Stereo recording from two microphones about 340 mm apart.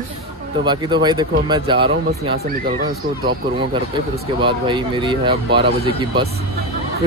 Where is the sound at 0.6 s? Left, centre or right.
Centre.